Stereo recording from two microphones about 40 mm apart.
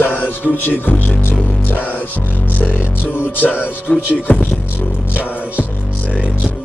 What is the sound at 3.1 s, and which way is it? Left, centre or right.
Music, left.